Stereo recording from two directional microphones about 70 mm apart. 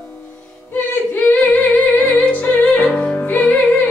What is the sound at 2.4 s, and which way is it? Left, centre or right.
Music, left.